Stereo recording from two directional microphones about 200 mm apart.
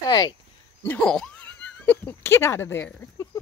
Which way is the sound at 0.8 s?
5° left (ahead or behind).